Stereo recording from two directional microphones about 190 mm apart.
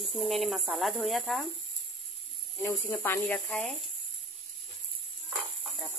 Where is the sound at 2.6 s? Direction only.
15° left (ahead or behind).